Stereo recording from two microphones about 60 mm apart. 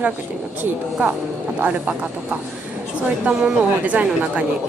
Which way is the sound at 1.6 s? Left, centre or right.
Right.